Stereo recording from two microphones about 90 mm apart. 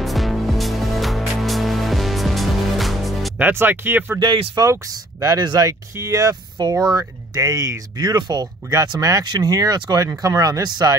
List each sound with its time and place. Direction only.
0.0 s music: centre (ahead or behind)
3.3 s speech: 20° right (ahead or behind)
4.6 s speech: 40° right (ahead or behind)
6.6 s speech: 50° right (ahead or behind)